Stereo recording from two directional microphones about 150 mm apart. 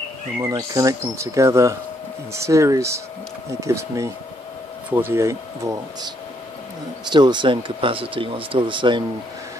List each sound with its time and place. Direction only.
0.4 s speech: 25° right (ahead or behind)